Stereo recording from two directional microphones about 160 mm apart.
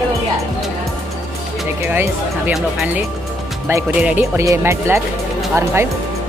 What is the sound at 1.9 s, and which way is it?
Speech, 10° right (ahead or behind).